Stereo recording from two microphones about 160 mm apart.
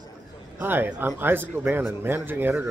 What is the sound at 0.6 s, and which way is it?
Speech, 10° right (ahead or behind).